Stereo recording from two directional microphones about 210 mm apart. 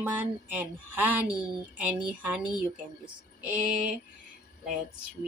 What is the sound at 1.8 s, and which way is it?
Speech, 5° right (ahead or behind).